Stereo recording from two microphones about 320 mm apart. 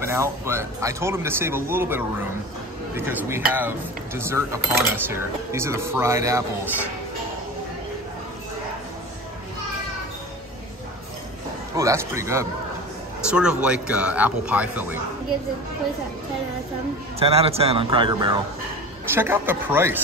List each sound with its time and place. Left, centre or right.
0.0 s speech: centre
11.7 s speech: centre
17.2 s speech: centre